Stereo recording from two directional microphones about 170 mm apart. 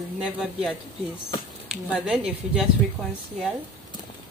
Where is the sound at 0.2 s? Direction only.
5° right (ahead or behind).